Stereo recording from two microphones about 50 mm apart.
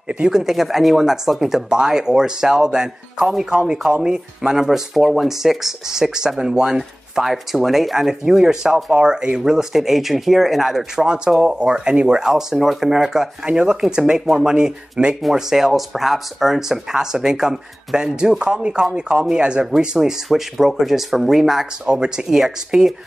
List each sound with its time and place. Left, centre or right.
0.1 s speech: centre
13.5 s speech: right
15.3 s speech: centre
21.8 s speech: centre